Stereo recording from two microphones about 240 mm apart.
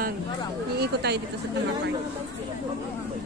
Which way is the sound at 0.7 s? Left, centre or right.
Right.